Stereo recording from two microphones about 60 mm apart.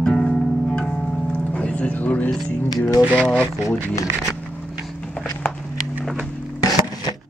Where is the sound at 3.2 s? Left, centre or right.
Left.